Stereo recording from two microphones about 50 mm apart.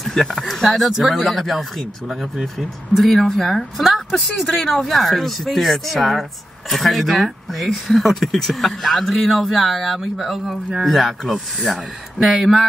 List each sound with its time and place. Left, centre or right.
0.0 s speech: centre